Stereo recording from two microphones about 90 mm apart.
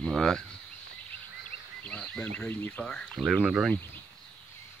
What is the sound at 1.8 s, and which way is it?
Speech, 15° left (ahead or behind).